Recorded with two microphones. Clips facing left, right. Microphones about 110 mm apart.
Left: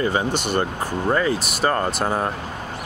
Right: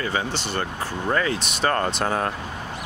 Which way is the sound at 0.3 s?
15° left (ahead or behind).